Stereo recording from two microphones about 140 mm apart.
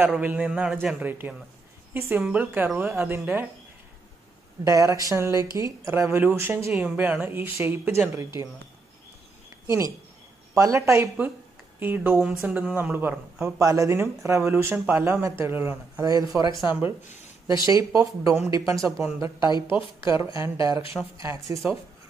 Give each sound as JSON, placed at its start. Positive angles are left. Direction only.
{"t": 0.0, "sound": "speech", "side_deg": -5}
{"t": 4.6, "sound": "speech", "side_deg": -25}
{"t": 9.7, "sound": "speech", "side_deg": -20}
{"t": 16.6, "sound": "speech", "side_deg": -15}
{"t": 19.5, "sound": "a woman's voice", "side_deg": 35}
{"t": 20.1, "sound": "speech", "side_deg": -20}